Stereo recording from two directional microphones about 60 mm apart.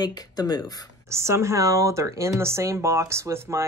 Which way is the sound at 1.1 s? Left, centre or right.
Right.